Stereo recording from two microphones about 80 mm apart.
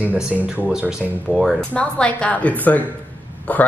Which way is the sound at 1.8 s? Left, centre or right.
Centre.